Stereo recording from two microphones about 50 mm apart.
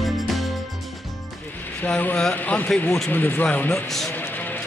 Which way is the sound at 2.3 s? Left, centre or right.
Left.